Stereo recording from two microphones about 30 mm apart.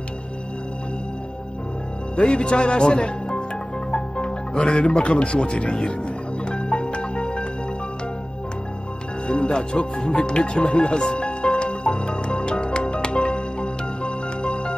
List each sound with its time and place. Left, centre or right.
2.1 s speech: left
3.9 s music: left
4.9 s speech: left
6.5 s music: left
9.5 s speech: left
10.6 s speech: left
10.9 s speech: left
11.1 s music: left